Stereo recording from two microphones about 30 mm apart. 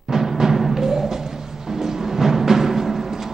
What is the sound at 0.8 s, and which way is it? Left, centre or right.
Music, centre.